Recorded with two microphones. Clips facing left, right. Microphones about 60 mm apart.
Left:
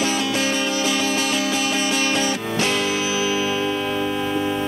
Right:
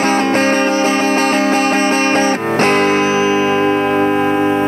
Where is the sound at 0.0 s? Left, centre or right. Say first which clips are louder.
Right 8 dB; right.